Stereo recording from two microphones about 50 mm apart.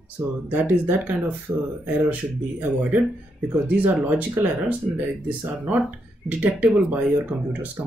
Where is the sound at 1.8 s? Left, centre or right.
Right.